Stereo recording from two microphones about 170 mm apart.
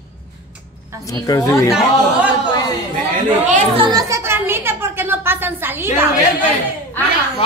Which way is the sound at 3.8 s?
25° right (ahead or behind).